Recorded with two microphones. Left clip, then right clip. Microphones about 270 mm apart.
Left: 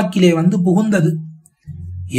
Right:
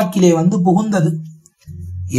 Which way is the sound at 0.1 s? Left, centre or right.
Centre.